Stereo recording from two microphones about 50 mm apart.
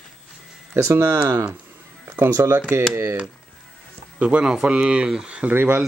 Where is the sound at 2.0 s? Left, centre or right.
Right.